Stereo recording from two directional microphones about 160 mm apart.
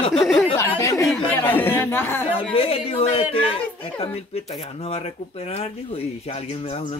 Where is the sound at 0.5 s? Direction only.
20° left (ahead or behind).